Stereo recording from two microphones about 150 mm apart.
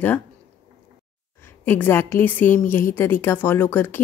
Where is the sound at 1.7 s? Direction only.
15° left (ahead or behind).